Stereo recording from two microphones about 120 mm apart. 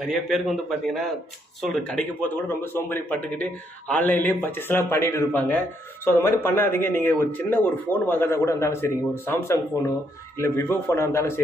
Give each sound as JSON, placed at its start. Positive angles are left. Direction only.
{"t": 0.0, "sound": "a man's voice", "side_deg": 0}
{"t": 1.8, "sound": "a man's voice", "side_deg": 15}